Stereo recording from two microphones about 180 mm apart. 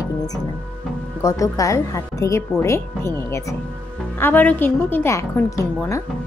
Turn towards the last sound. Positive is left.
turn(degrees=15)  # may be behind; listen again after turning